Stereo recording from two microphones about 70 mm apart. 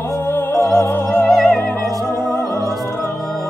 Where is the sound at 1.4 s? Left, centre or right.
Centre.